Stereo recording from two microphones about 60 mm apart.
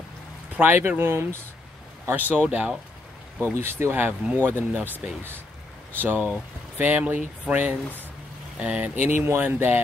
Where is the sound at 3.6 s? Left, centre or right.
Right.